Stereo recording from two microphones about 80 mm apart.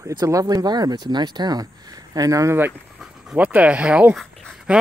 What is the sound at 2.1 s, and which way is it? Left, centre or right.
Speech, right.